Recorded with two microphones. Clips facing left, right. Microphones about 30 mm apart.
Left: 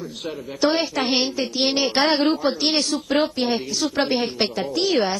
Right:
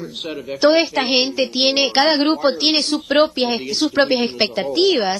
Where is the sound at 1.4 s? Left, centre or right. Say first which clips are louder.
Right 4 dB; right.